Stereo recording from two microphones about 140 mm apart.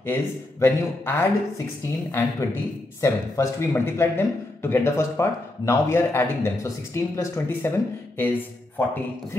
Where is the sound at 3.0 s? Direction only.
20° left (ahead or behind).